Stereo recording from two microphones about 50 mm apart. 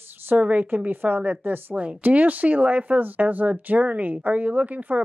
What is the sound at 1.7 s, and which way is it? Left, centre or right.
Speech, right.